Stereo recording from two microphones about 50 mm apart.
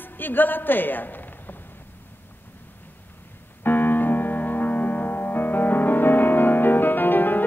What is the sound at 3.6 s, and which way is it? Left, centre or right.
Music, left.